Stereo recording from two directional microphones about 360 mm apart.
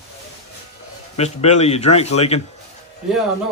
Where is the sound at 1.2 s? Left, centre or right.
Centre.